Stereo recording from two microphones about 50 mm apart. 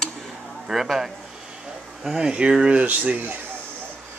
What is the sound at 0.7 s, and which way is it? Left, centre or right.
Speech, centre.